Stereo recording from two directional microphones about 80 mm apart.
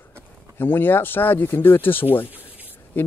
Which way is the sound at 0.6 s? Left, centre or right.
Left.